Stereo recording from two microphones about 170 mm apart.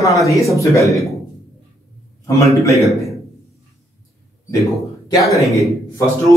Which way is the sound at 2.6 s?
20° left (ahead or behind).